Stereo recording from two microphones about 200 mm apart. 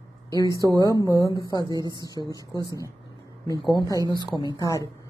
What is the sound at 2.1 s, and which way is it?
Speech, 20° left (ahead or behind).